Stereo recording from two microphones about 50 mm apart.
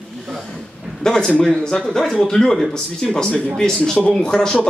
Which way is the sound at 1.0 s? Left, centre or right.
Centre.